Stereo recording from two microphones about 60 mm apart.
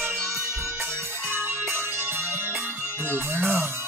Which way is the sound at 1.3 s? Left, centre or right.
Right.